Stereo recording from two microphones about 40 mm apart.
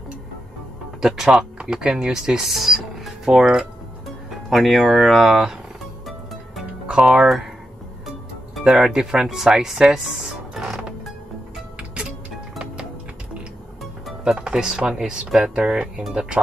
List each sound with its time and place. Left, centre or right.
1.0 s speech: centre
2.4 s speech: centre
3.3 s speech: centre
4.3 s speech: centre
7.0 s speech: right
8.6 s speech: centre
10.2 s music: centre
14.4 s speech: centre